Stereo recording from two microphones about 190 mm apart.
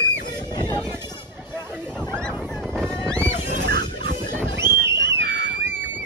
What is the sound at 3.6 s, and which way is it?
Music, 60° right (ahead or behind).